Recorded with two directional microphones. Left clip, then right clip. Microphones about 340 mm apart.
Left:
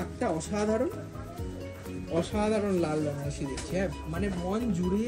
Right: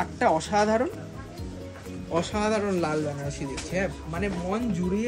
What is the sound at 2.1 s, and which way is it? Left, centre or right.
Speech, centre.